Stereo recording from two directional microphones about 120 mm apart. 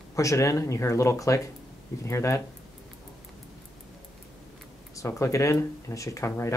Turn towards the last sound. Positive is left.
turn(degrees=25)  # may be behind; listen again after turning